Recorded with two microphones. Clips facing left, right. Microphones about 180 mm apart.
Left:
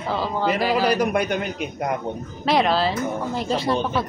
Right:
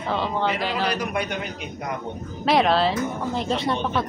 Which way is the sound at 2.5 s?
Centre (ahead or behind).